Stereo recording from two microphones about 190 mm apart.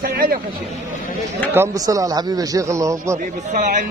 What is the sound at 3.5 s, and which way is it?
Speech, 45° right (ahead or behind).